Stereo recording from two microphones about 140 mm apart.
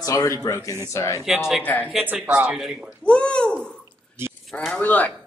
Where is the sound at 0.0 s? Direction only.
25° left (ahead or behind).